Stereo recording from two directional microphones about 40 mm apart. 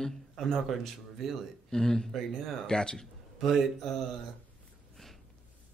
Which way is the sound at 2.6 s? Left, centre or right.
Centre.